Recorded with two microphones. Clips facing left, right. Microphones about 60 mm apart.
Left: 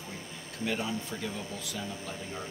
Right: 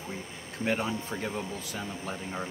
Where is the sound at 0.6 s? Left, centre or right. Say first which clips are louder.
Right 3 dB; right.